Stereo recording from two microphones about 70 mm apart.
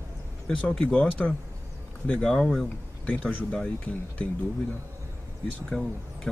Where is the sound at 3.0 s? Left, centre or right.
Left.